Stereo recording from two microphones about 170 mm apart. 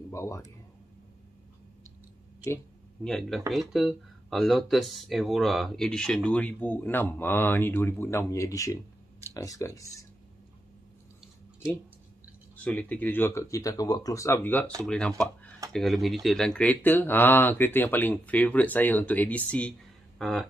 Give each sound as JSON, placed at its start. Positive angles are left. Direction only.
{"t": 0.1, "sound": "speech", "side_deg": 15}
{"t": 3.0, "sound": "speech", "side_deg": 0}
{"t": 12.6, "sound": "speech", "side_deg": 10}